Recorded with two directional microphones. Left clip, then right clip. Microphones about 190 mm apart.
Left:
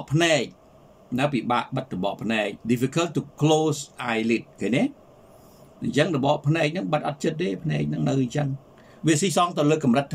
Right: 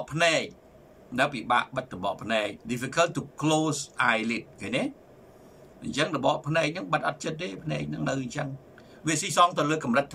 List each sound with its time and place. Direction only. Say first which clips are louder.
0.0 s speech: left 3 dB; 20° left (ahead or behind)
5.9 s speech: left 4 dB; 20° left (ahead or behind)